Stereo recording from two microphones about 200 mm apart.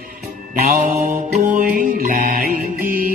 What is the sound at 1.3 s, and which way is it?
Mantra, 40° right (ahead or behind).